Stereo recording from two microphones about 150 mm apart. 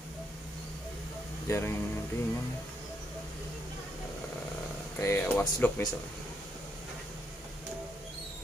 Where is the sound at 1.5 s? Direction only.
20° left (ahead or behind).